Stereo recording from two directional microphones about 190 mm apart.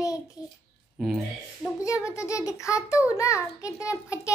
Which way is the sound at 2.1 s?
15° left (ahead or behind).